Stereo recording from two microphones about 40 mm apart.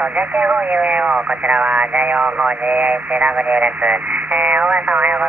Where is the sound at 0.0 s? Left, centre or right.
Right.